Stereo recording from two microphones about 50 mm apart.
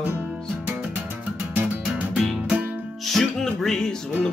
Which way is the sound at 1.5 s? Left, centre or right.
Right.